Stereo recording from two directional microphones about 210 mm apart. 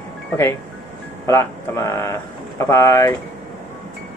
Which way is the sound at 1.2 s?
15° left (ahead or behind).